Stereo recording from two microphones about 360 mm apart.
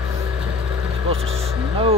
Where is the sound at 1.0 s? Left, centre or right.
Centre.